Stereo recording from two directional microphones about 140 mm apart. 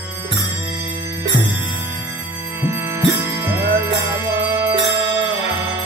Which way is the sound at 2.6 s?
20° right (ahead or behind).